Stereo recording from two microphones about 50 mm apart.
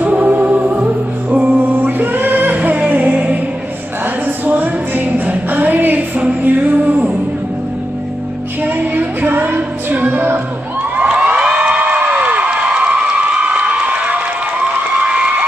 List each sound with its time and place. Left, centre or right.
0.0 s music: right
4.0 s music: right
8.6 s music: right
11.0 s crowd: right
11.5 s a sound: right